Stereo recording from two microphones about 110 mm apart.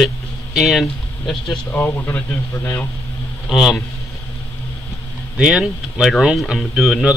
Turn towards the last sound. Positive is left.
turn(degrees=-5)  # may be behind; listen again after turning